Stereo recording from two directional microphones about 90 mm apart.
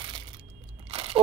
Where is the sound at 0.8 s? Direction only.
90° right.